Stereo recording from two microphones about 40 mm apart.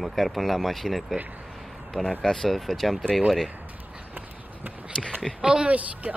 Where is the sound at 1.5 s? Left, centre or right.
Centre.